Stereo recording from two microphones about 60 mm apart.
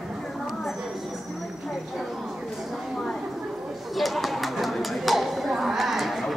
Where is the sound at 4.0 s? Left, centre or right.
Centre.